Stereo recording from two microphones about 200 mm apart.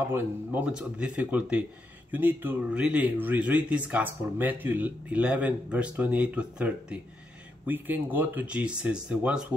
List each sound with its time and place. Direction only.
0.1 s speech: 10° right (ahead or behind)